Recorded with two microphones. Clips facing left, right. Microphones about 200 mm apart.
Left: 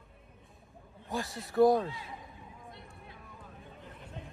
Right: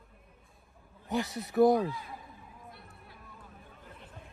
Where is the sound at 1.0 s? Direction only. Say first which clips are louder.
Right 4 dB; 20° right (ahead or behind).